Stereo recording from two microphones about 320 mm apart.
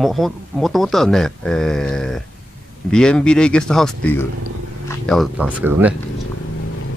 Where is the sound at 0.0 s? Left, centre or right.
Centre.